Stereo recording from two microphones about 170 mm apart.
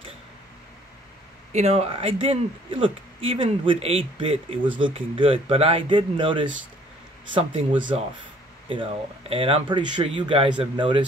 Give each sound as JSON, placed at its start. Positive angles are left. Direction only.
{"t": 1.5, "sound": "a man's voice", "side_deg": -40}
{"t": 9.3, "sound": "a man's voice", "side_deg": -30}